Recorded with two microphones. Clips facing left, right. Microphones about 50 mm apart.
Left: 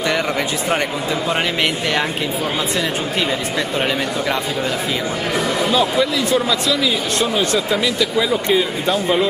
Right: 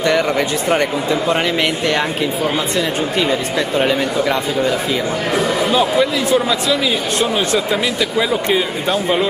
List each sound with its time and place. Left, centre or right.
0.0 s speech: centre
3.2 s speech: centre
5.7 s speech: centre